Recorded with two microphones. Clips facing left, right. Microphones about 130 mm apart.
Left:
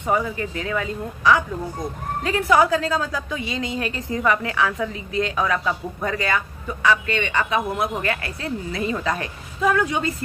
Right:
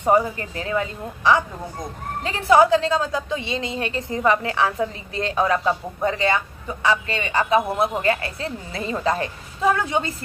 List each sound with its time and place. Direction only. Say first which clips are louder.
0.0 s a woman's voice: right 4 dB; 35° right (ahead or behind)